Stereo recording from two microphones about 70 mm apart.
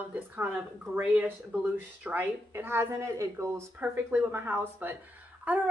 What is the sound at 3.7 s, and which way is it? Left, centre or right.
Speech, right.